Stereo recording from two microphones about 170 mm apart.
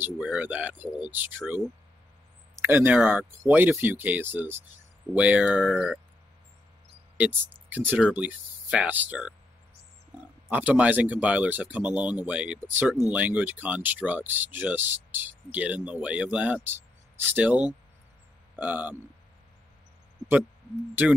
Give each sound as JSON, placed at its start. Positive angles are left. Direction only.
{"t": 0.0, "sound": "speech", "side_deg": -10}
{"t": 7.2, "sound": "speech", "side_deg": -10}
{"t": 10.5, "sound": "speech", "side_deg": -10}